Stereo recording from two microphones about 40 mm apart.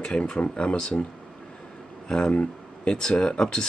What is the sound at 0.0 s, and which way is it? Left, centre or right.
Speech, left.